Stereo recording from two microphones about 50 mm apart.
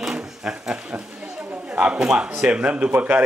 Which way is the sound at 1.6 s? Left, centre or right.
Right.